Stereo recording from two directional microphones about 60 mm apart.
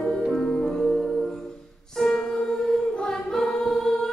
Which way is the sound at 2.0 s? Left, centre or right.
Centre.